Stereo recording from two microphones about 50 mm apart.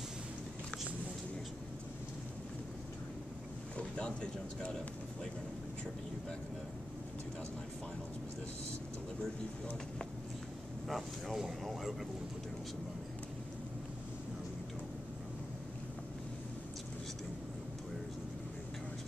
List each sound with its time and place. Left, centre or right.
3.7 s speech: left
10.9 s speech: centre